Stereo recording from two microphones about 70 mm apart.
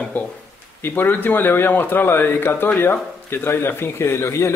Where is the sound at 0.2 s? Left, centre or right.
Left.